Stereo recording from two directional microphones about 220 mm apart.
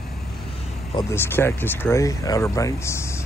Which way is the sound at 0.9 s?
10° left (ahead or behind).